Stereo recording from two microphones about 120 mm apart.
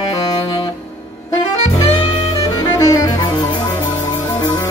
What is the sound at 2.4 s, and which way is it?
Music, 30° left (ahead or behind).